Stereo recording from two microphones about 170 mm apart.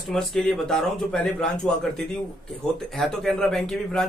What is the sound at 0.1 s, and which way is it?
Speech, centre (ahead or behind).